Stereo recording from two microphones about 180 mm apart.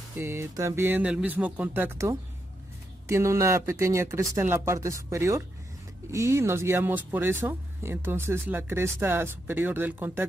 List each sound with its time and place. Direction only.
0.1 s speech: 15° right (ahead or behind)